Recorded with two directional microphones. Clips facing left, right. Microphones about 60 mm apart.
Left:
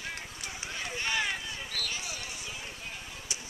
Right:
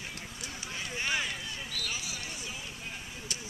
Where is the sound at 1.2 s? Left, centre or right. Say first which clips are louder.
Left 3 dB; left.